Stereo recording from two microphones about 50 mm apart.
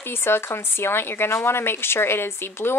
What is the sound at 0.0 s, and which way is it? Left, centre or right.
A woman's voice, left.